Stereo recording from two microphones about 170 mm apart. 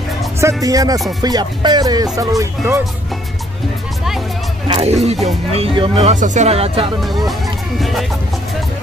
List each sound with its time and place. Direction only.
0.4 s music: 20° right (ahead or behind)
2.1 s speech: 20° right (ahead or behind)
4.6 s speech: 35° right (ahead or behind)